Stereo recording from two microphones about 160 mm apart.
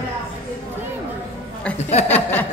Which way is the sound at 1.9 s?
40° left (ahead or behind).